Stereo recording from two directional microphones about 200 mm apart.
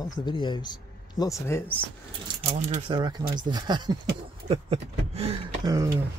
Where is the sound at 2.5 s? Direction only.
35° right (ahead or behind).